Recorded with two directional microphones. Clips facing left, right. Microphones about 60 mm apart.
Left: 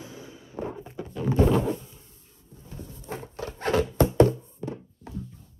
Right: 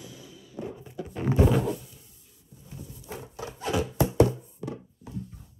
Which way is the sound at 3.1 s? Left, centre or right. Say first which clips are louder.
Left 3 dB; left.